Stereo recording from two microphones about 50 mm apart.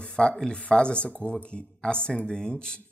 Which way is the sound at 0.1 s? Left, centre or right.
Centre.